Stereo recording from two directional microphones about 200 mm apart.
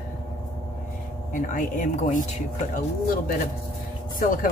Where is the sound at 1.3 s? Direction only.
40° left (ahead or behind).